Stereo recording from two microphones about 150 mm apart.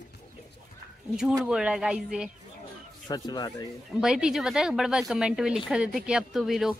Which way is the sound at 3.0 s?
25° left (ahead or behind).